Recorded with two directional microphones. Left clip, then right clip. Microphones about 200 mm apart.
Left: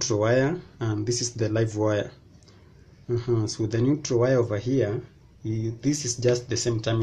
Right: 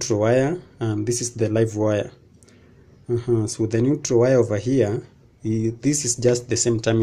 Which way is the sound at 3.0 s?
15° right (ahead or behind).